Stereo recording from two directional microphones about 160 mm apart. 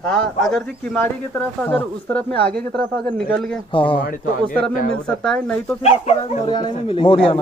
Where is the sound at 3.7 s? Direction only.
30° left (ahead or behind).